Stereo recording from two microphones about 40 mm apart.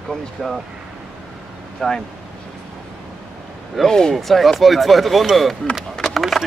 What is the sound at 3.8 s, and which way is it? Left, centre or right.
Speech, centre.